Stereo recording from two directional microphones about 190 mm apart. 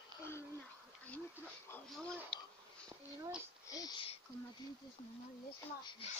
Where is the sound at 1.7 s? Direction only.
5° left (ahead or behind).